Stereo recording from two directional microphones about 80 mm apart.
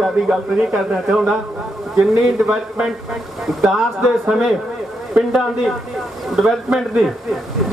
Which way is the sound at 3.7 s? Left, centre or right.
Centre.